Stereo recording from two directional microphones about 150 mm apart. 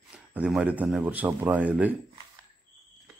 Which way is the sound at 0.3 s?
5° right (ahead or behind).